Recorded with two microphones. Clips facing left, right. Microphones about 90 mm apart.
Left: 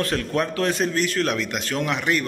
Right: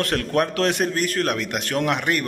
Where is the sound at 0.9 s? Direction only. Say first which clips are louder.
Even; 45° right (ahead or behind).